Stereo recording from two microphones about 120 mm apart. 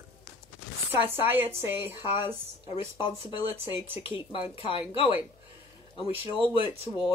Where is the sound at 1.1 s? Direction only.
15° right (ahead or behind).